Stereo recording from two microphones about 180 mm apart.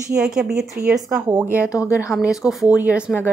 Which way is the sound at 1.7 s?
15° left (ahead or behind).